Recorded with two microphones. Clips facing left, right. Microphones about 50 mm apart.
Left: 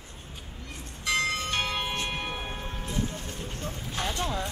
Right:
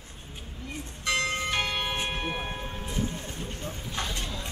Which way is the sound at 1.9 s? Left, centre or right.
Centre.